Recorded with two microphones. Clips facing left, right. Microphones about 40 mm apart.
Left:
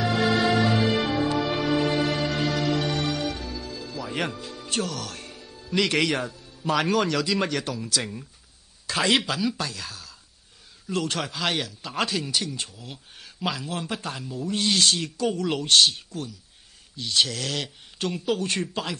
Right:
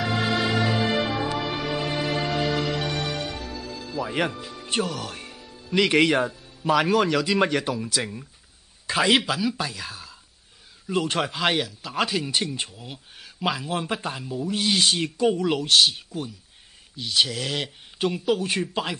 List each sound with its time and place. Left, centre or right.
0.6 s music: centre
4.1 s speech: centre
11.5 s speech: centre
12.3 s speech: right
12.9 s speech: centre
15.5 s speech: centre
18.7 s speech: centre